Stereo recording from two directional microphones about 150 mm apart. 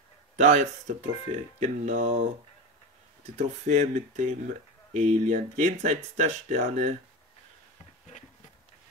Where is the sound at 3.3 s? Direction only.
50° right (ahead or behind).